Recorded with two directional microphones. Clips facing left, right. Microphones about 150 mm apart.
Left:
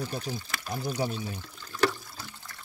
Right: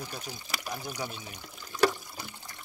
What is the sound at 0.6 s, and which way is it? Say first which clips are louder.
Pour: left 2 dB; 15° right (ahead or behind).